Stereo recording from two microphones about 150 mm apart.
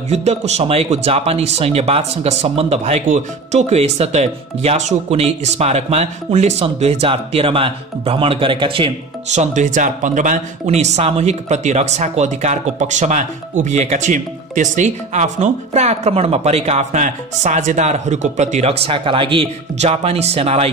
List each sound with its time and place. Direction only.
0.1 s speech: 45° right (ahead or behind)